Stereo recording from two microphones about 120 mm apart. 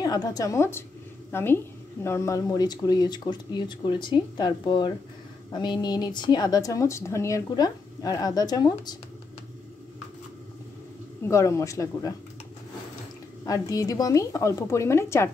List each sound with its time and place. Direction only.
0.0 s a woman's voice: 30° left (ahead or behind)
11.2 s speech: 25° left (ahead or behind)
13.5 s speech: 30° left (ahead or behind)